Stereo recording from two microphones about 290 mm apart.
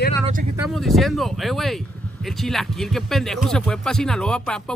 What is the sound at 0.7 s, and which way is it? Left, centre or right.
A man's voice, centre.